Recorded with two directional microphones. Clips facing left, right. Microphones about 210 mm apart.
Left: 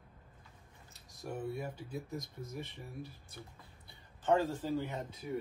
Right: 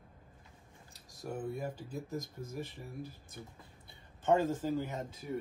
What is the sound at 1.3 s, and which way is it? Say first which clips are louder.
Speech: right 1 dB; 50° right (ahead or behind).